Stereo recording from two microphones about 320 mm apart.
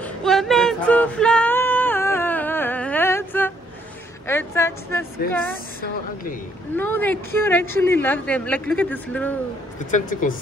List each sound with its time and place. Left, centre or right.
0.0 s a sound: centre
4.3 s speech: centre
6.8 s speech: centre
9.8 s speech: left